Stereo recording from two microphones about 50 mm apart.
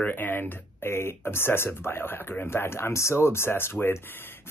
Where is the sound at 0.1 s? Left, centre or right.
Left.